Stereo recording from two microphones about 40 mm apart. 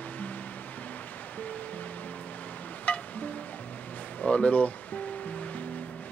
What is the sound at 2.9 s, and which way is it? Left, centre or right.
Music, left.